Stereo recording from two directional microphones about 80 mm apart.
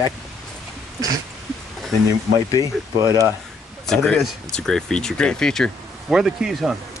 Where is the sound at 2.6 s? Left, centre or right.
Right.